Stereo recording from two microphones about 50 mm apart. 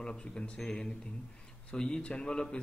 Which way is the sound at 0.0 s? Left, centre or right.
Centre.